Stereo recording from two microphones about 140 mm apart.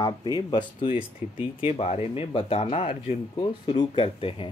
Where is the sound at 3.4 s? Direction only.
35° left (ahead or behind).